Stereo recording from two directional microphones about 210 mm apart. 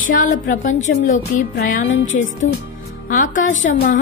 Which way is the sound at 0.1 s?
40° left (ahead or behind).